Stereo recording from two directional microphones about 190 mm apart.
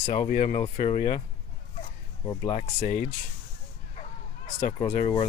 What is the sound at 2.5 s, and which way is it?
Speech, 35° left (ahead or behind).